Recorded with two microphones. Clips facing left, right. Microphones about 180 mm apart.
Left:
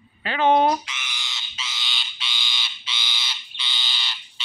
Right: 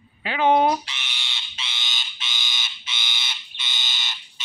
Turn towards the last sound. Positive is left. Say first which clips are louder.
# left 1 dB
turn(degrees=-45)  # may be behind; listen again after turning